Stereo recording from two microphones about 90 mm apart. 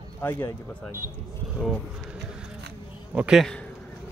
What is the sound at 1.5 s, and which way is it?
Speech, centre (ahead or behind).